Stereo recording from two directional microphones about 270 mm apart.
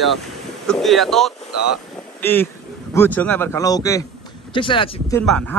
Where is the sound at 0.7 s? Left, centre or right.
Centre.